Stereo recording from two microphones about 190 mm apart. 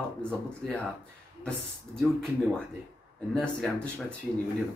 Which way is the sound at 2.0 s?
Centre (ahead or behind).